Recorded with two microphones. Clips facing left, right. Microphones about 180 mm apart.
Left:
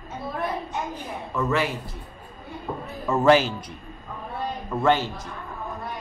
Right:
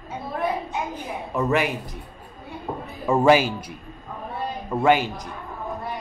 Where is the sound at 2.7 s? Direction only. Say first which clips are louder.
Right 1 dB; 15° right (ahead or behind).